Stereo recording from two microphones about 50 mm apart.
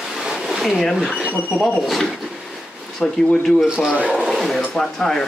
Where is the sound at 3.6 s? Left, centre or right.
Centre.